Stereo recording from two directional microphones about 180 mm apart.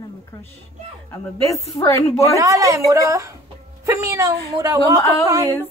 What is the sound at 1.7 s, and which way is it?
Speech, 15° left (ahead or behind).